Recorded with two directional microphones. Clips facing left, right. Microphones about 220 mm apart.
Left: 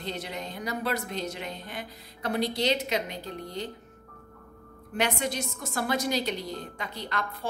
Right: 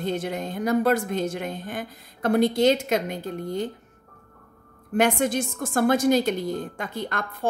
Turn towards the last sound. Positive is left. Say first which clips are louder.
# right 6 dB
turn(degrees=-50)  # may be behind; listen again after turning